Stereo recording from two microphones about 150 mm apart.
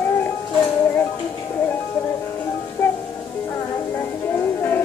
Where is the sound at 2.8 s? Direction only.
15° left (ahead or behind).